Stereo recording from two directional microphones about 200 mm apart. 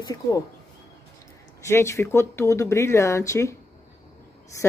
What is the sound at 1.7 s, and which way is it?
Speech, 15° left (ahead or behind).